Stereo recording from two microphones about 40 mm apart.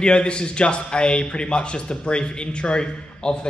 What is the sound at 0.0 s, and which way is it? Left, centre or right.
A man's voice, left.